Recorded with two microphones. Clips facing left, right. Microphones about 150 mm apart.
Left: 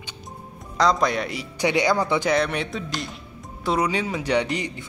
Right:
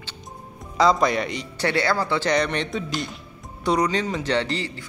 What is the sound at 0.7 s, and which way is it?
A man's voice, centre (ahead or behind).